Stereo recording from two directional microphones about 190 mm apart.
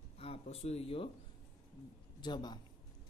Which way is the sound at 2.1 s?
20° left (ahead or behind).